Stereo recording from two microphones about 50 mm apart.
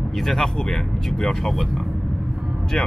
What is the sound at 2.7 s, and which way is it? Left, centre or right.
Speech, centre.